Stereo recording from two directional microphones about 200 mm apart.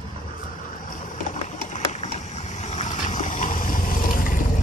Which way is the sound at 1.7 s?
35° left (ahead or behind).